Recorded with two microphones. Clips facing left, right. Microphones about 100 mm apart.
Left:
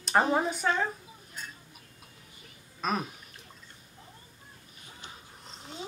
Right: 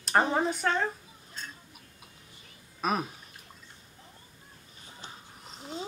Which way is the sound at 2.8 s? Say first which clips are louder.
Right 1 dB; 5° right (ahead or behind).